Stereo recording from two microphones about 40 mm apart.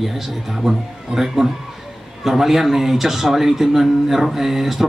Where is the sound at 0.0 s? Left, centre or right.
Centre.